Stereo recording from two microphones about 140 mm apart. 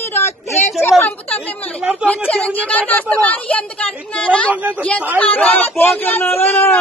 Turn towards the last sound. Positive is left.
turn(degrees=15)  # may be behind; listen again after turning